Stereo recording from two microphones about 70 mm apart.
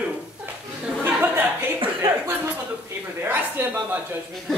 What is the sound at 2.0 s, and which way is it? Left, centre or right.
Chuckle, right.